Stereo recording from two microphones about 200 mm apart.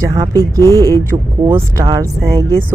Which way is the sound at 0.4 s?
15° right (ahead or behind).